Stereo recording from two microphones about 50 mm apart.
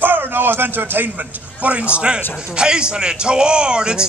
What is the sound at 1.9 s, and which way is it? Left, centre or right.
A man's voice, right.